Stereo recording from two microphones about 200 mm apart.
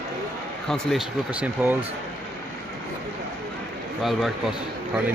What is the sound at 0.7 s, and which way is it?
Speech, centre (ahead or behind).